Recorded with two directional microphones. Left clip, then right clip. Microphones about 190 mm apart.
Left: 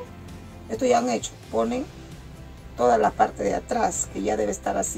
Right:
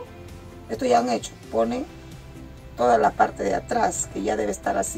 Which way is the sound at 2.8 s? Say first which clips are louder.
Right 1 dB; 15° left (ahead or behind).